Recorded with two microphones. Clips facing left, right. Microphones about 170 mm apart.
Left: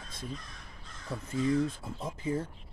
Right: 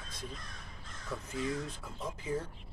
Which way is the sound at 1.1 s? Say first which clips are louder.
Left 7 dB; 30° left (ahead or behind).